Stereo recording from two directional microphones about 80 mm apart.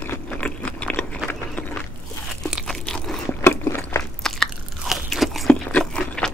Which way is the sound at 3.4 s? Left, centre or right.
Left.